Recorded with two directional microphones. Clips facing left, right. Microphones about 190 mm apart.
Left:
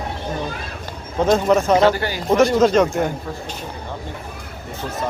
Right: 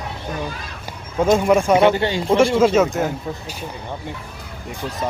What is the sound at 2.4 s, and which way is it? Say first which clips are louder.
Speech: left 1 dB; 5° right (ahead or behind).